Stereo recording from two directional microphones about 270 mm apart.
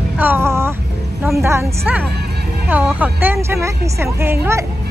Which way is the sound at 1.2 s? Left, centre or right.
Centre.